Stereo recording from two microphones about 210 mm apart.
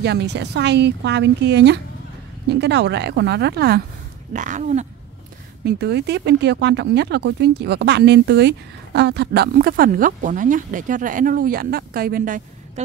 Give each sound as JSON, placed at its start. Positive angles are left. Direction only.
{"t": 0.0, "sound": "speech", "side_deg": -50}
{"t": 4.3, "sound": "speech", "side_deg": -35}
{"t": 5.7, "sound": "speech", "side_deg": -50}